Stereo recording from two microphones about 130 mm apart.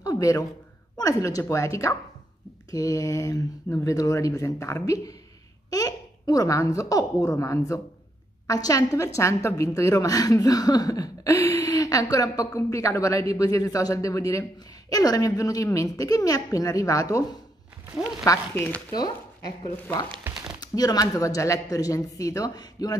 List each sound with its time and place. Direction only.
0.0 s a sound: 25° left (ahead or behind)
0.9 s a woman's voice: 25° left (ahead or behind)
18.2 s a woman's voice: 20° left (ahead or behind)
20.6 s a woman's voice: 30° left (ahead or behind)